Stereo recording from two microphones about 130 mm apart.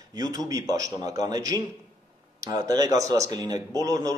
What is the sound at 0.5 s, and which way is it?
Speech, 25° right (ahead or behind).